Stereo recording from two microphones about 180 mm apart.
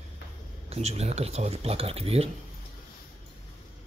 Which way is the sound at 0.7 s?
35° right (ahead or behind).